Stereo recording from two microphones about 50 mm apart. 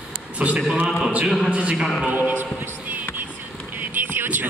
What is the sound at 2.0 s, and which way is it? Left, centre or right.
Speech, right.